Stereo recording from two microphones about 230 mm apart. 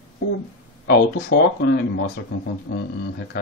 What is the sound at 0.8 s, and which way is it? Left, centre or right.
Speech, left.